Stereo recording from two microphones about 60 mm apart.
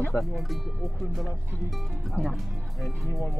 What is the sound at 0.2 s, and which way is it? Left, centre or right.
Speech, centre.